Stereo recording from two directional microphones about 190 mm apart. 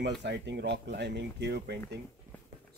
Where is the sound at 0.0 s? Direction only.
65° right (ahead or behind).